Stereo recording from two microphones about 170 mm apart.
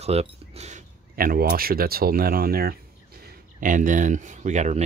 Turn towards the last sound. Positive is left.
turn(degrees=-45)  # may be behind; listen again after turning